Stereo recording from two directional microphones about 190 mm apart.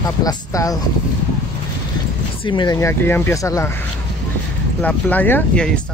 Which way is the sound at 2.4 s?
25° left (ahead or behind).